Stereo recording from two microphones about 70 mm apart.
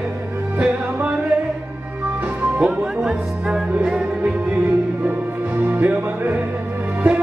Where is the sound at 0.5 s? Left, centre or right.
Right.